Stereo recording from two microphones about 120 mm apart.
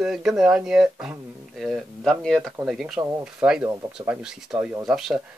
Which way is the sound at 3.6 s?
20° right (ahead or behind).